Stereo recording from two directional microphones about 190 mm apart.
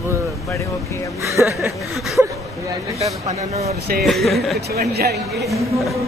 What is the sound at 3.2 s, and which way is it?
Speech, 35° right (ahead or behind).